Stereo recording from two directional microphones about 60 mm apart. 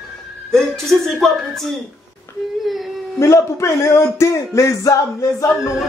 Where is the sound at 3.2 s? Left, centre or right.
Left.